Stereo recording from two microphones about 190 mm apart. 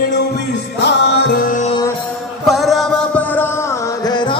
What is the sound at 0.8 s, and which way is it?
Music, 65° left (ahead or behind).